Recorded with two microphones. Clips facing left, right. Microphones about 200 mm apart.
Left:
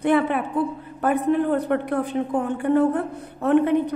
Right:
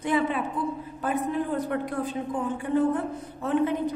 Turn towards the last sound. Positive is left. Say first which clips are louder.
# left 6 dB
turn(degrees=65)  # may be behind; listen again after turning